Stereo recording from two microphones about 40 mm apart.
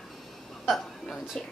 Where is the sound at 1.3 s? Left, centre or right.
Centre.